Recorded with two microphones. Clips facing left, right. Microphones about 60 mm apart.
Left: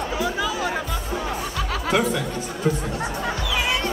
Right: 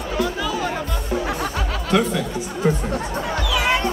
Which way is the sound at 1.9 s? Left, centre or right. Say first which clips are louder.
Right 3 dB; centre.